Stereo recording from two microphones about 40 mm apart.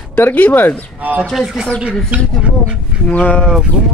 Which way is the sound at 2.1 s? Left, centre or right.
Right.